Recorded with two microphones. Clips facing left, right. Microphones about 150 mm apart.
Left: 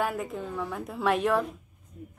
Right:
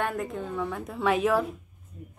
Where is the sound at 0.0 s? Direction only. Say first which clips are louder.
Even; centre (ahead or behind).